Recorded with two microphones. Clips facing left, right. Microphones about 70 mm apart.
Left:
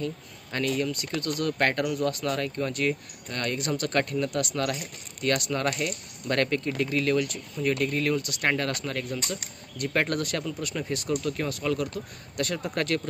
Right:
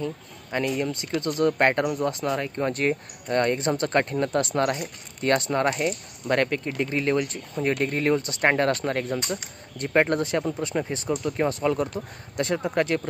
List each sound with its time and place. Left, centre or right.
0.0 s speech: centre
2.6 s speech: right